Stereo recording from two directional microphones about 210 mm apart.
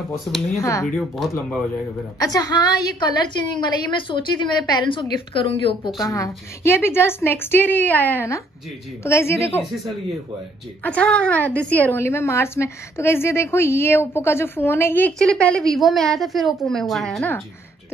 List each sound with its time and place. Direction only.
0.2 s a woman's voice: centre (ahead or behind)
0.6 s a woman's voice: 15° left (ahead or behind)
0.8 s a woman's voice: centre (ahead or behind)
2.1 s a woman's voice: 20° left (ahead or behind)
5.9 s a woman's voice: 15° left (ahead or behind)
9.6 s a woman's voice: centre (ahead or behind)